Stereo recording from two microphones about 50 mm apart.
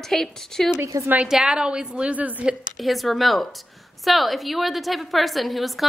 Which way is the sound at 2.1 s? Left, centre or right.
Right.